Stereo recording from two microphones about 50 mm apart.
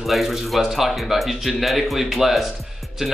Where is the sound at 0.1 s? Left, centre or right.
Centre.